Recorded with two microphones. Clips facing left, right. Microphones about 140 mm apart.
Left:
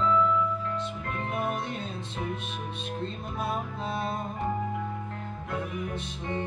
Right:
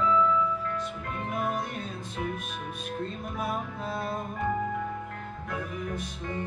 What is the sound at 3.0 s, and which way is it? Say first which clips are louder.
Music: right 1 dB; 25° left (ahead or behind).